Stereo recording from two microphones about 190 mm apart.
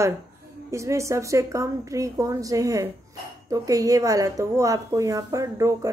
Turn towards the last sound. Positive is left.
turn(degrees=-15)  # may be behind; listen again after turning